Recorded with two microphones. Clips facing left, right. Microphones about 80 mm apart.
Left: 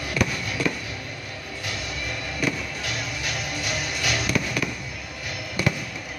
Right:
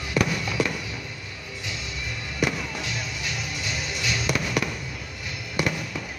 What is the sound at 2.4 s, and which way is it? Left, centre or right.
Music, right.